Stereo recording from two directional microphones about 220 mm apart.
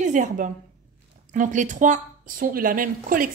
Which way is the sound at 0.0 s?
35° right (ahead or behind).